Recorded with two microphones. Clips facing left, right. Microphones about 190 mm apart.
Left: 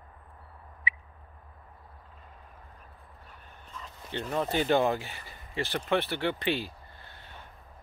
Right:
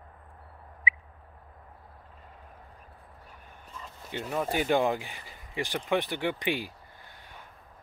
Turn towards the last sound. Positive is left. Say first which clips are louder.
# left 1 dB
turn(degrees=-15)  # may be behind; listen again after turning